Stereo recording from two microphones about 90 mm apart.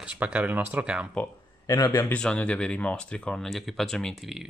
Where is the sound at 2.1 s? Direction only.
15° left (ahead or behind); by 4.5 s centre (ahead or behind).